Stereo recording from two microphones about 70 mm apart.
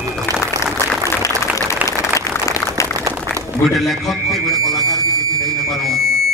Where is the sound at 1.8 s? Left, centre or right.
Left.